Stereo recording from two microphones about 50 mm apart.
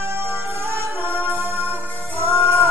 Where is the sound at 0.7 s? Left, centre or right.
Right.